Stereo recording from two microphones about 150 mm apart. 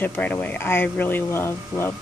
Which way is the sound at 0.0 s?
10° left (ahead or behind).